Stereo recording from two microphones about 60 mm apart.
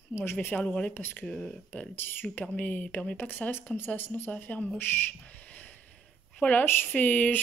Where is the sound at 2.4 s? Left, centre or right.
Left.